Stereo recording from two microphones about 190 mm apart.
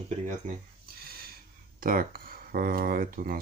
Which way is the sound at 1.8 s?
50° right (ahead or behind).